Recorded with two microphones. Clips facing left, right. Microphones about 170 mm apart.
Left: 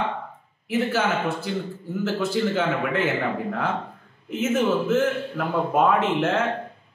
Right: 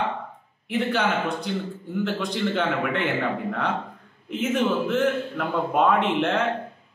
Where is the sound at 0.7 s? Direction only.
5° left (ahead or behind).